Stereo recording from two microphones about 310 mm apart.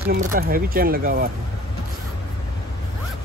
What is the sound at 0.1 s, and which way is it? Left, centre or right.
Speech, right.